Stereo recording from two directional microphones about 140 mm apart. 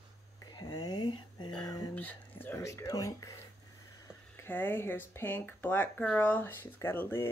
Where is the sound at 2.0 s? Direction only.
10° left (ahead or behind).